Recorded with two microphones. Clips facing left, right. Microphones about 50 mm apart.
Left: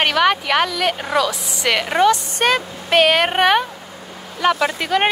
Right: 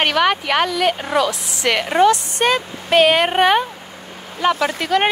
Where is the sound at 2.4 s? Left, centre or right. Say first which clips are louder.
Even; left.